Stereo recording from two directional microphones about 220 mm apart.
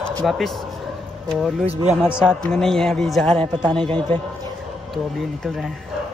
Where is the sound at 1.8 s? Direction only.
30° right (ahead or behind).